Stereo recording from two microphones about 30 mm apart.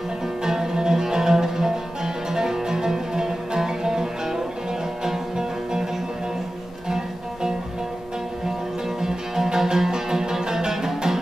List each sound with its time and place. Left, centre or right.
0.4 s music: right
9.0 s music: centre